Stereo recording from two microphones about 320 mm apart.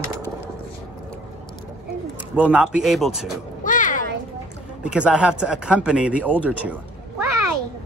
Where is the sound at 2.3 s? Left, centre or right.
Centre.